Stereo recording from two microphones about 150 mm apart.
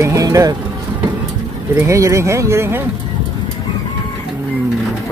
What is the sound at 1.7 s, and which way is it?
Speech, 20° right (ahead or behind).